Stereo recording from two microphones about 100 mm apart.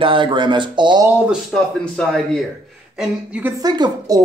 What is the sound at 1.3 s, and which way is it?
Speech, 5° left (ahead or behind).